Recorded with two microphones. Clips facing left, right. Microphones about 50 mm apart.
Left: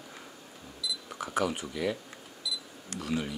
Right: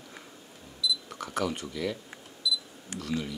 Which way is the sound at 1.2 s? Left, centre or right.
Centre.